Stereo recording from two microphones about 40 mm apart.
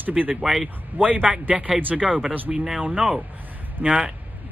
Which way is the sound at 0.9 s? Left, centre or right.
Right.